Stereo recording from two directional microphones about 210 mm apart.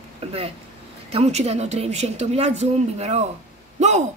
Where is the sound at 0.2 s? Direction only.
30° right (ahead or behind).